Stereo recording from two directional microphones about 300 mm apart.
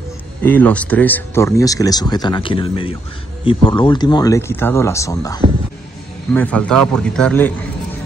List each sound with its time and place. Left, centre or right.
0.4 s a man's voice: centre